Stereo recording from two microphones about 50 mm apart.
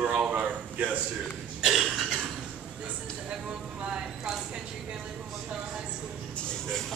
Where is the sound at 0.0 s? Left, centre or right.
Centre.